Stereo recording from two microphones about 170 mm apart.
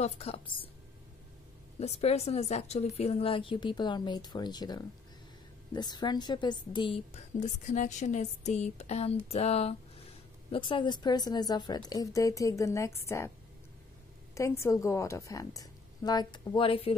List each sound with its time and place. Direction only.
0.0 s a woman's voice: 35° left (ahead or behind)
1.8 s a woman's voice: 40° left (ahead or behind)
7.2 s a woman's voice: 45° left (ahead or behind); by 13.3 s 15° left (ahead or behind)
14.3 s a woman's voice: 15° left (ahead or behind); by 16.9 s 30° left (ahead or behind)